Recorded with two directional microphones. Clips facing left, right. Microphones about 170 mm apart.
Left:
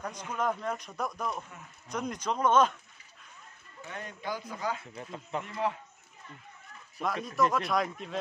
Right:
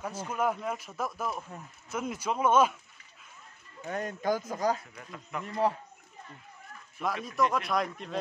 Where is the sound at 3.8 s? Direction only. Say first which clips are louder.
Right 8 dB; 45° right (ahead or behind).